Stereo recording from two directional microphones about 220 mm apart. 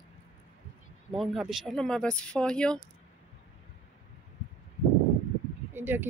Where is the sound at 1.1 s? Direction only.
Centre (ahead or behind).